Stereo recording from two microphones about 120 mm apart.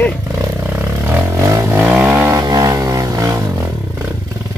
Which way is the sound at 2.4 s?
30° right (ahead or behind).